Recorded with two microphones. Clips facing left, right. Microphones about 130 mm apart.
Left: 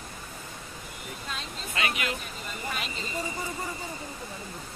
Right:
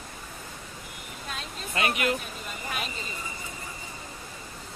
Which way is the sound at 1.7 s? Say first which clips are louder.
Right 4 dB; 50° right (ahead or behind).